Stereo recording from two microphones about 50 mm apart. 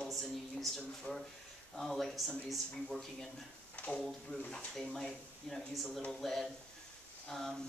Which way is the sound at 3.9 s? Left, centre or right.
Centre.